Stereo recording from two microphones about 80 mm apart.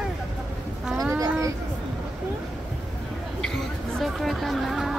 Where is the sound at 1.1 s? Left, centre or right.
Right.